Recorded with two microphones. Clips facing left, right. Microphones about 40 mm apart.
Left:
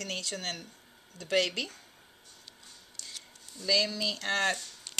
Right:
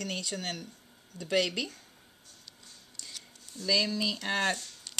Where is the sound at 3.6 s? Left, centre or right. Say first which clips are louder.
Even; centre.